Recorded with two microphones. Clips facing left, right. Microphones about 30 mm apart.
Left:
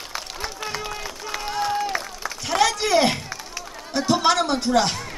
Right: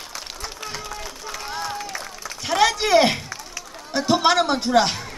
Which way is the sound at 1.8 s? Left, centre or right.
Left.